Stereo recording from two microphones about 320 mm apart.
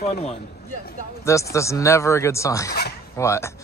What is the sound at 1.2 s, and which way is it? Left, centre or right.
Speech, centre.